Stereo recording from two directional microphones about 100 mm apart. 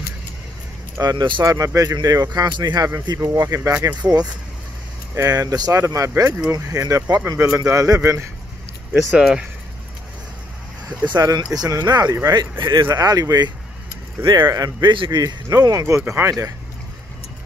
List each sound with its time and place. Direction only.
1.0 s speech: 50° right (ahead or behind)
1.4 s speech: 35° right (ahead or behind)
3.2 s speech: 35° right (ahead or behind)
9.1 s speech: 5° right (ahead or behind)
11.1 s speech: 45° right (ahead or behind)
12.9 s speech: 40° right (ahead or behind)
15.0 s speech: 40° right (ahead or behind)